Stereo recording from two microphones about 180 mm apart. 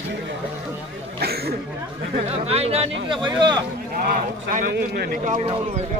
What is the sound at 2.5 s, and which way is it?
Speech, 35° right (ahead or behind).